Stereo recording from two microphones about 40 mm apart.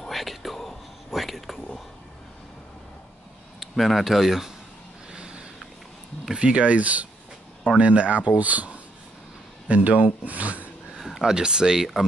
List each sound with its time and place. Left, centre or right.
0.1 s whispering: centre
3.5 s speech: centre
5.1 s a sound: right
6.4 s speech: right
11.0 s a sound: centre
11.2 s speech: centre